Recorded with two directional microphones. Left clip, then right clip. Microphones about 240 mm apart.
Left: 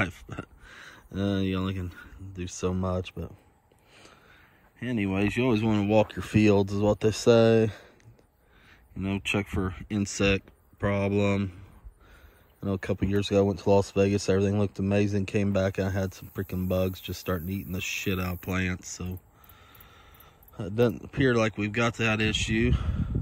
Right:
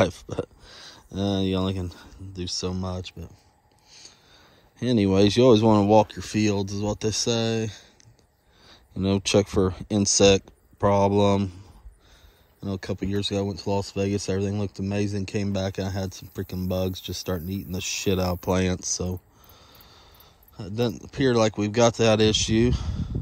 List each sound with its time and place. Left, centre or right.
0.0 s speech: centre
5.2 s speech: centre
9.7 s speech: centre
12.5 s speech: centre
16.9 s speech: centre
17.2 s speech: centre
19.6 s vehicle: centre
20.5 s speech: centre